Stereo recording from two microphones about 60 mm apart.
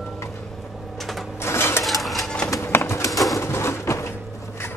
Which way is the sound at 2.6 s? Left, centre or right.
Left.